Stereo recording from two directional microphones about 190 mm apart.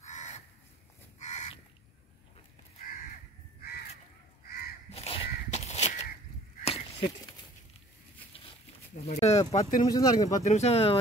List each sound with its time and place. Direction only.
0.0 s crow: 40° left (ahead or behind)
1.2 s livestock: 35° left (ahead or behind)
4.5 s crow: 50° left (ahead or behind)
4.9 s crow: 30° left (ahead or behind)
6.6 s a sound: 30° left (ahead or behind)
9.0 s speech: 35° left (ahead or behind)
9.8 s speech: 20° left (ahead or behind)
10.5 s speech: 35° left (ahead or behind)